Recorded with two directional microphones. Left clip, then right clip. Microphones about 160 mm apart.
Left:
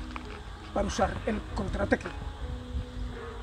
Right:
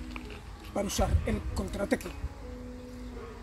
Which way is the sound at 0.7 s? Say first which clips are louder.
Left 3 dB; 25° right (ahead or behind).